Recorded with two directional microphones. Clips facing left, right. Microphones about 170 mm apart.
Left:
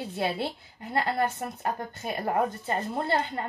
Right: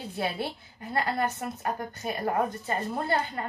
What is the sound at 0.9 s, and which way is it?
A woman's voice, 25° left (ahead or behind).